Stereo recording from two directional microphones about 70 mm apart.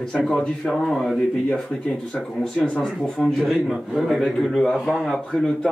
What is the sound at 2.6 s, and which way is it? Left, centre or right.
Speech, centre.